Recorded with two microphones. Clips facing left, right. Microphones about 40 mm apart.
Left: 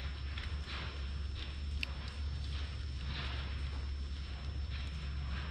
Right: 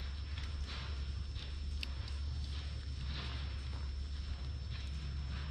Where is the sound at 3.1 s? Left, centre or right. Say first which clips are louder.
Left 4 dB; left.